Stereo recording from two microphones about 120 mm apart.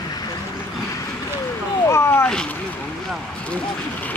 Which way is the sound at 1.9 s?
20° left (ahead or behind).